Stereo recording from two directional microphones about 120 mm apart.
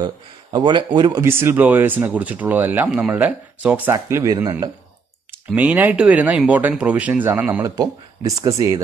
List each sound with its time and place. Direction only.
0.0 s speech: 40° right (ahead or behind)
1.2 s speech: 20° right (ahead or behind)
3.9 s speech: 30° right (ahead or behind)
5.5 s speech: 10° right (ahead or behind)
7.6 s speech: 30° right (ahead or behind)